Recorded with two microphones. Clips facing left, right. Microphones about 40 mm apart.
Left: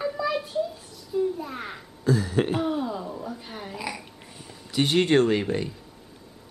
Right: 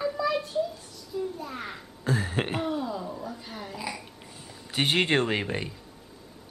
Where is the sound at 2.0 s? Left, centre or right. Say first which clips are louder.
Left 5 dB; right.